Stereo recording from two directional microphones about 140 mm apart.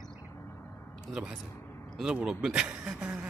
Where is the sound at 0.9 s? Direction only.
5° right (ahead or behind).